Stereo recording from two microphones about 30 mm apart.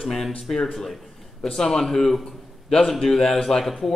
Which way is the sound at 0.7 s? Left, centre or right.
Centre.